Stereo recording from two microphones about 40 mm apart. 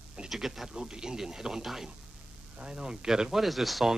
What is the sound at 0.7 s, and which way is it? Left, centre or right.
Speech, centre.